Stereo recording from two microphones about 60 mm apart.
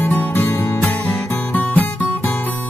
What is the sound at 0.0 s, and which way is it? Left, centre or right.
Music, left.